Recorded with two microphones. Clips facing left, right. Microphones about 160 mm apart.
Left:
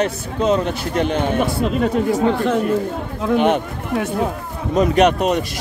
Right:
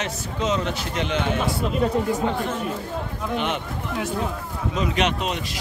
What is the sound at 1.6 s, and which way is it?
Speech, 90° left.